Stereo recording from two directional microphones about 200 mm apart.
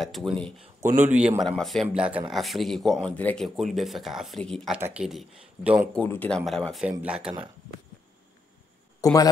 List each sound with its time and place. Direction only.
0.0 s speech: centre (ahead or behind)
5.9 s speech: 5° left (ahead or behind)
9.0 s speech: 15° left (ahead or behind)